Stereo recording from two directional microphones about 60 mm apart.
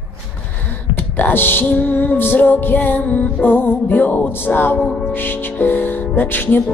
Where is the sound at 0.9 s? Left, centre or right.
Left.